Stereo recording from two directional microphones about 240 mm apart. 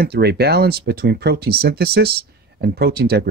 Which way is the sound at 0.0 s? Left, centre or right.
Right.